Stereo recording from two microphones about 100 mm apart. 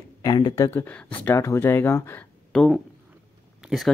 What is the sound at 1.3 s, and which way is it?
Speech, 25° left (ahead or behind).